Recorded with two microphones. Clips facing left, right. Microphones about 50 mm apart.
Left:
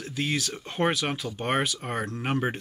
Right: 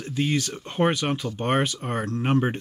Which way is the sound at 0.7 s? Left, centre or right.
Centre.